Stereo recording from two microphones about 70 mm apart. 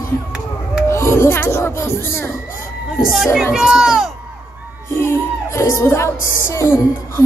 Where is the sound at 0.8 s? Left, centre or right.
Left.